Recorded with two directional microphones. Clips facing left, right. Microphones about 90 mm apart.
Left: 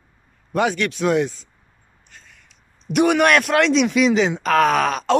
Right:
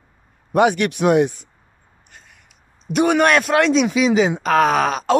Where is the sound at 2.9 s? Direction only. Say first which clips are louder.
Even; centre (ahead or behind).